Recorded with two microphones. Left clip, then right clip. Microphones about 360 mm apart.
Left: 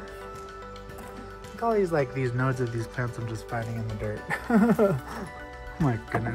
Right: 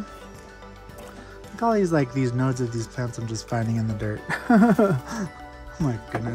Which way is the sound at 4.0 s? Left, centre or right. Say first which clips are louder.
Left 1 dB; right.